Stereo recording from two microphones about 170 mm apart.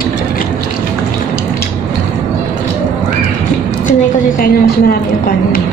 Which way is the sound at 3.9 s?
55° left (ahead or behind).